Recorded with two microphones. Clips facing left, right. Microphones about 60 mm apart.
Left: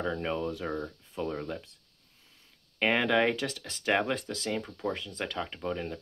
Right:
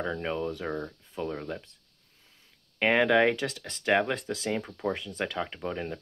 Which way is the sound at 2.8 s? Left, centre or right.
Centre.